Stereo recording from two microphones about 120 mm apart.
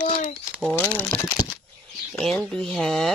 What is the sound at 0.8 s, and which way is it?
Crumpling, 15° left (ahead or behind).